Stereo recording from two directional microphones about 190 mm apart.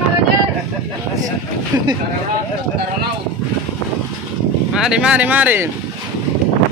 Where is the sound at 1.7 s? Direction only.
20° right (ahead or behind).